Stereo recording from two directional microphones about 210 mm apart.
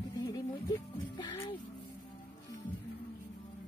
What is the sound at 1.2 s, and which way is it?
Music, 20° left (ahead or behind).